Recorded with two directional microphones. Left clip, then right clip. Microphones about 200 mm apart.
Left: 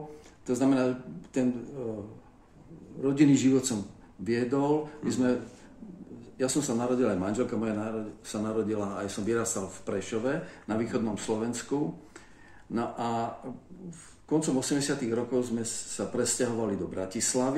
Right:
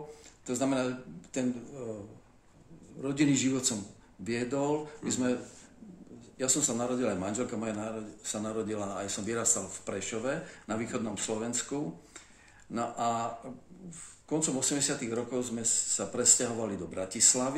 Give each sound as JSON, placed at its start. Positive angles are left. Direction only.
{"t": 0.5, "sound": "a man's voice", "side_deg": -15}
{"t": 3.0, "sound": "a man's voice", "side_deg": -15}
{"t": 14.3, "sound": "a man's voice", "side_deg": -15}